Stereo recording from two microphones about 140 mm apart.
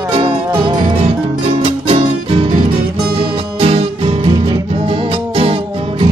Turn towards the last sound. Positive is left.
turn(degrees=-40)  # may be behind; listen again after turning